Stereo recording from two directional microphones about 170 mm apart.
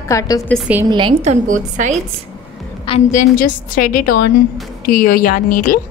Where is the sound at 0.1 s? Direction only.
20° left (ahead or behind).